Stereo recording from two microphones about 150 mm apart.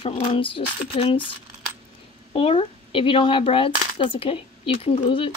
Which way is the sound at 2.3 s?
35° left (ahead or behind).